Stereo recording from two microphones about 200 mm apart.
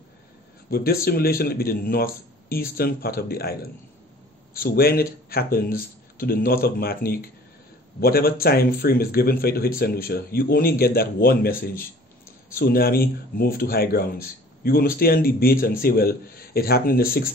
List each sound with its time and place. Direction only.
0.7 s speech: 50° left (ahead or behind)
4.6 s speech: 50° left (ahead or behind)